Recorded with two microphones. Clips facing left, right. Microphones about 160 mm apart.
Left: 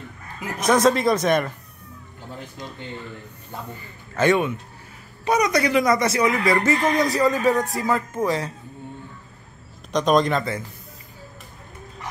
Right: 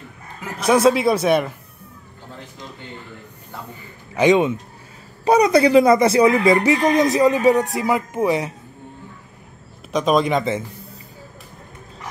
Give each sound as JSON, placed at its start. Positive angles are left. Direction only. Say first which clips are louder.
{"t": 0.7, "sound": "speech", "louder": "right 3 dB", "side_deg": -10}
{"t": 4.1, "sound": "speech", "louder": "right 4 dB", "side_deg": -15}
{"t": 5.2, "sound": "speech", "louder": "right 6 dB", "side_deg": -30}
{"t": 9.9, "sound": "speech", "louder": "right 1 dB", "side_deg": -5}